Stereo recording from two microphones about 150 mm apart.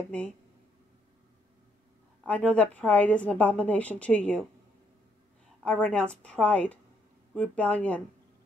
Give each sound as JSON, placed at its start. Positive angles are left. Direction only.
{"t": 2.2, "sound": "a woman's voice", "side_deg": 10}
{"t": 5.6, "sound": "a woman's voice", "side_deg": 10}